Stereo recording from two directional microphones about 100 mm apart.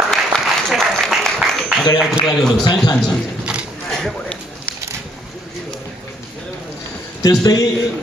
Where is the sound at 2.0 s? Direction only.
Centre (ahead or behind).